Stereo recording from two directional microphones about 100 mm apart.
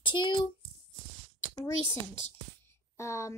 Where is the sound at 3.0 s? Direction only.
30° left (ahead or behind).